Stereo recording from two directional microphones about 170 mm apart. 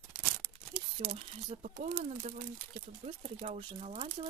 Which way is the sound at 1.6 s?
35° right (ahead or behind).